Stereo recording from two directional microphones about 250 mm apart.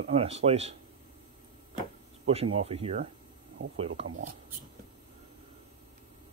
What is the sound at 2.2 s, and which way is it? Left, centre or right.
Speech, right.